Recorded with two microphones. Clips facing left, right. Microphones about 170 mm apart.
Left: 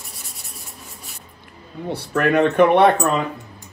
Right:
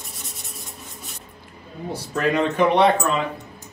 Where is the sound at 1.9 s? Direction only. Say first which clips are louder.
Left 4 dB; 65° left (ahead or behind).